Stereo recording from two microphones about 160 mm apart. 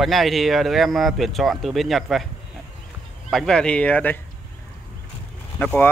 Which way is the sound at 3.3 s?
5° left (ahead or behind).